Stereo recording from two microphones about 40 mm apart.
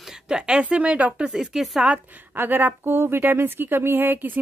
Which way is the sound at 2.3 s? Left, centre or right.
Right.